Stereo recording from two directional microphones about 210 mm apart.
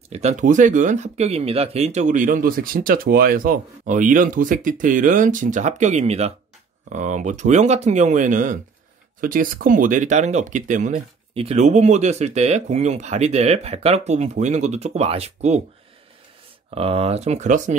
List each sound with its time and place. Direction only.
0.1 s speech: 30° right (ahead or behind)
16.7 s speech: 25° right (ahead or behind)